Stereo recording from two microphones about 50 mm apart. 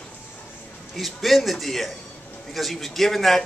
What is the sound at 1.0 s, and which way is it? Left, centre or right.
A man's voice, centre.